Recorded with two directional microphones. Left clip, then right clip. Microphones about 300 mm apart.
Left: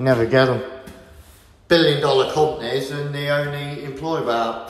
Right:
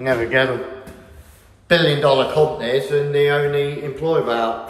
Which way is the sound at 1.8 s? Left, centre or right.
Centre.